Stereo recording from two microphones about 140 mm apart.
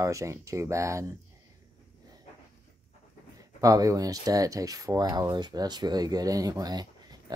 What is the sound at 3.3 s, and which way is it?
Speech, 25° right (ahead or behind).